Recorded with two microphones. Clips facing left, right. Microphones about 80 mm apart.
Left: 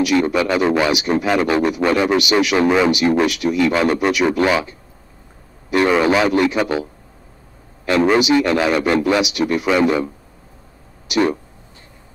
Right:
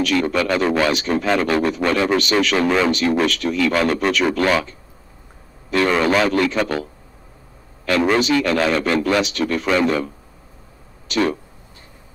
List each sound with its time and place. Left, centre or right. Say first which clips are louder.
0.0 s speech: left 3 dB; centre
8.1 s speech: left 3 dB; centre